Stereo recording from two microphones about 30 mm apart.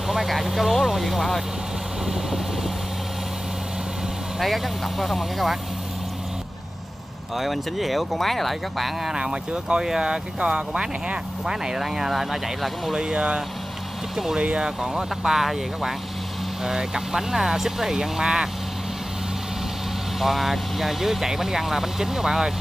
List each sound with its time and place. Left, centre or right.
0.5 s speech: centre
2.0 s vehicle: centre
4.4 s speech: centre
7.3 s speech: centre
9.1 s speech: right
11.8 s speech: centre
12.9 s speech: right
14.1 s speech: centre
14.4 s speech: right
20.2 s speech: centre